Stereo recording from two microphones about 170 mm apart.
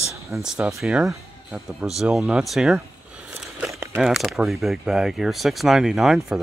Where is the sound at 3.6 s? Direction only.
15° right (ahead or behind).